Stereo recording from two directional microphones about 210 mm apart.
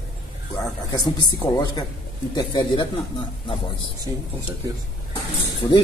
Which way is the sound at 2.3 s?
20° left (ahead or behind).